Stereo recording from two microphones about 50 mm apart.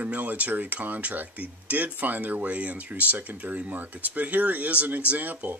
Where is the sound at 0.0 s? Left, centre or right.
Right.